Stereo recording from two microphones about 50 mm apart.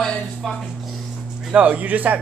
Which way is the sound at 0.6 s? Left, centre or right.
Centre.